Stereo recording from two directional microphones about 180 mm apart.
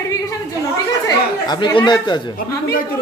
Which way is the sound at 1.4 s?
25° left (ahead or behind).